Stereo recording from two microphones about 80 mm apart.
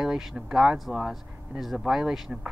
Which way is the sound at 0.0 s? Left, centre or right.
Centre.